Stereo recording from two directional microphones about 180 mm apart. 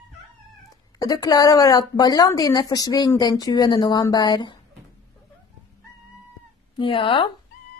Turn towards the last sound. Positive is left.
turn(degrees=30)  # may be behind; listen again after turning